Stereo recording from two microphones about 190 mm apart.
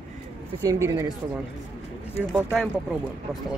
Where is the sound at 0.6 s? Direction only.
15° right (ahead or behind).